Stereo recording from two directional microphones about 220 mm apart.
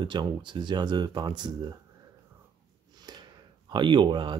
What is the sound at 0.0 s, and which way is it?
Speech, 20° right (ahead or behind).